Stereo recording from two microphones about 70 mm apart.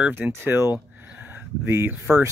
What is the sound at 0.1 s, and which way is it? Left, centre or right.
Speech, right.